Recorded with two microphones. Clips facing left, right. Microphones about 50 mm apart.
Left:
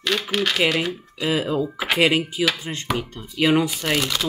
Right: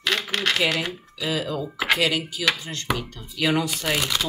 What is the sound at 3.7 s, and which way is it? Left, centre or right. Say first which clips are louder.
Speech: left 2 dB; centre.